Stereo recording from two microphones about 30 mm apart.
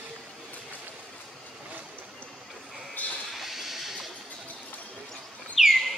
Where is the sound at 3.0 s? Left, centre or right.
Left.